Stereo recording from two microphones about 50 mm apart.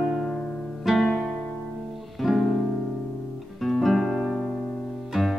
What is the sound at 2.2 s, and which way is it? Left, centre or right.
Music, centre.